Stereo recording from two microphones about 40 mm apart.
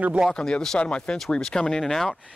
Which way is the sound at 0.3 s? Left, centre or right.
Centre.